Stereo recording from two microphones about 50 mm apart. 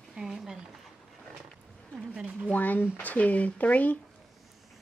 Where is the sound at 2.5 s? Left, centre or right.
Left.